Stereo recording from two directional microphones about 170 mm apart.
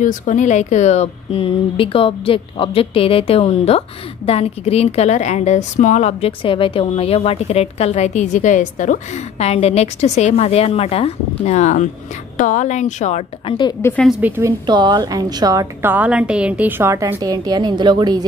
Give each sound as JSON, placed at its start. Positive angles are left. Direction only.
{"t": 0.0, "sound": "a woman's voice", "side_deg": 50}
{"t": 14.0, "sound": "a woman's voice", "side_deg": -10}
{"t": 14.7, "sound": "a woman's voice", "side_deg": -25}